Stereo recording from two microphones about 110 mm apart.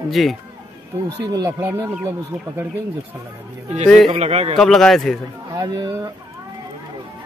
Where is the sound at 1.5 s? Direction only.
20° right (ahead or behind).